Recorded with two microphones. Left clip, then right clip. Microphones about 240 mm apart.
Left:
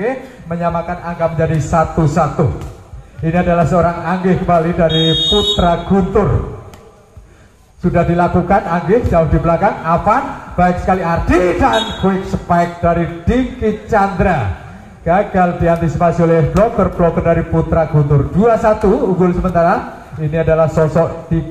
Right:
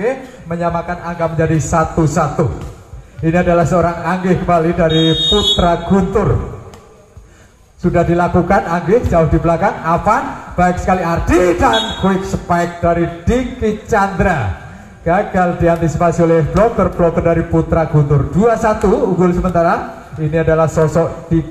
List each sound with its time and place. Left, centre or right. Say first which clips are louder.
0.0 s a man's voice: right 1 dB; right
7.8 s a man's voice: even; right